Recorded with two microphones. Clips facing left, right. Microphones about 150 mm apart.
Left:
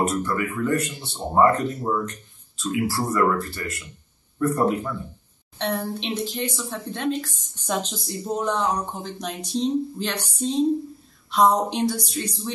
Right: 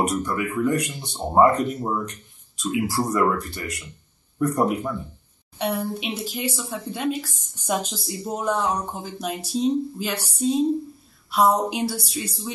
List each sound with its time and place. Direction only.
0.0 s speech: 15° right (ahead or behind)